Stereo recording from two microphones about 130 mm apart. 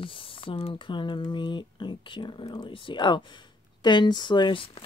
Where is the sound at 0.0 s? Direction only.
45° left (ahead or behind).